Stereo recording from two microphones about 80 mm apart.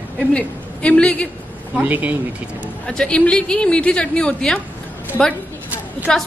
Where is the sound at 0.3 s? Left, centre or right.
Centre.